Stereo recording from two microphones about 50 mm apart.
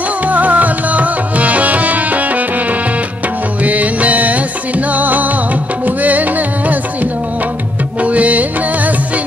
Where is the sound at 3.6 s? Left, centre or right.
Right.